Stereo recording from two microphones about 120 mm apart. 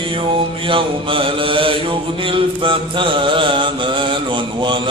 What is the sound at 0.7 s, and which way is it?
Mantra, 45° right (ahead or behind).